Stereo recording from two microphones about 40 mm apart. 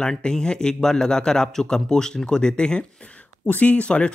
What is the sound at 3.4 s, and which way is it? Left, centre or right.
Speech, left.